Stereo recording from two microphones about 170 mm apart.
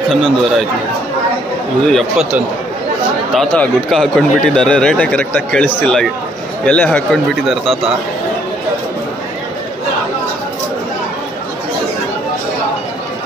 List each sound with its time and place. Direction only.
0.1 s speech: 5° left (ahead or behind)
2.0 s a man's voice: 5° right (ahead or behind)